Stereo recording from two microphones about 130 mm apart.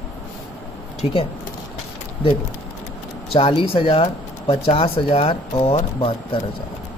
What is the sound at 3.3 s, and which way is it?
Speech, 40° left (ahead or behind).